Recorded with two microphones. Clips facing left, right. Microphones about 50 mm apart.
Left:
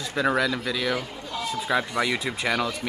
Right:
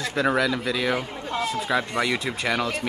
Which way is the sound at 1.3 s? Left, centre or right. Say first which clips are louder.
Right 4 dB; right.